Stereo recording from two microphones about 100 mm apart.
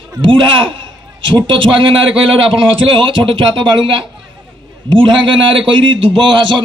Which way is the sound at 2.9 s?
60° right (ahead or behind).